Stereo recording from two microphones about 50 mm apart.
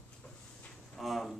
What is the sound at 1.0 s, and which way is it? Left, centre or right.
Speech, centre.